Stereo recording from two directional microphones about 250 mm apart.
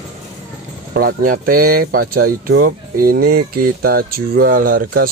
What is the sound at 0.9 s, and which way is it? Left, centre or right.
Speech, right.